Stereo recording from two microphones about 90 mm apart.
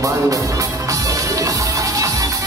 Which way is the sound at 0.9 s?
40° right (ahead or behind).